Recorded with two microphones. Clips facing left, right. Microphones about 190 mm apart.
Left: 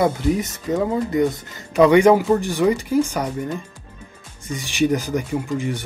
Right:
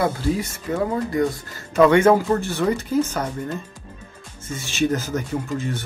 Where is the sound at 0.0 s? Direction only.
20° left (ahead or behind).